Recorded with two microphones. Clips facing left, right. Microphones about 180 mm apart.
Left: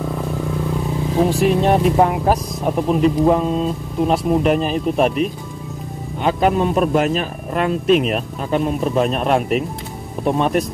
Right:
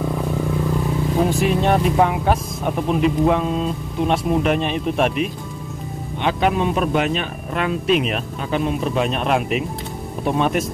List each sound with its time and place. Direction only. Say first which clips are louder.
0.0 s vehicle: right 1 dB; centre (ahead or behind)
3.2 s speech: left 2 dB; centre (ahead or behind)
4.6 s speech: left 3 dB; 40° left (ahead or behind)
6.2 s speech: left 3 dB; centre (ahead or behind)